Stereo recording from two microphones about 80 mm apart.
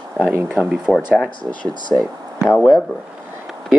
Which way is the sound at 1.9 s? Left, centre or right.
Left.